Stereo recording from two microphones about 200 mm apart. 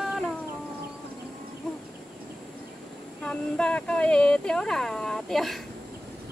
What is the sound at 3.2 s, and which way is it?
Speech, 5° left (ahead or behind).